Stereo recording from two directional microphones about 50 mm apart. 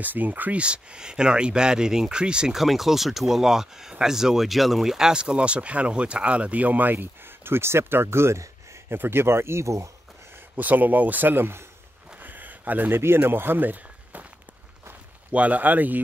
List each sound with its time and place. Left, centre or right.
0.0 s speech: right
0.6 s speech: centre
2.5 s speech: centre; by 8.9 s right
8.9 s speech: right
10.5 s speech: right
12.2 s a sound: right
13.0 s speech: right
15.3 s speech: right